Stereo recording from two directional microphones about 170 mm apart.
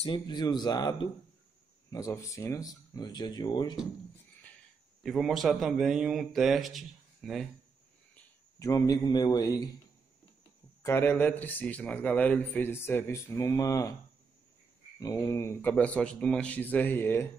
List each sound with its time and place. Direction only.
0.0 s speech: 30° left (ahead or behind)
5.0 s speech: centre (ahead or behind)
8.5 s speech: 20° left (ahead or behind)
10.8 s speech: 15° left (ahead or behind)
15.0 s speech: 15° left (ahead or behind)